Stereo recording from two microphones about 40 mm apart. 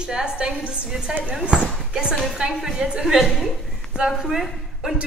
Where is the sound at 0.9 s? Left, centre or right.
Centre.